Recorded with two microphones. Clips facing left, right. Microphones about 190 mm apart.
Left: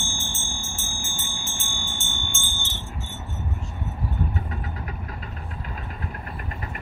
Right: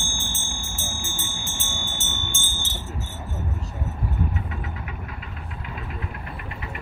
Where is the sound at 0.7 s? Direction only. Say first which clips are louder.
Right 2 dB; 35° right (ahead or behind).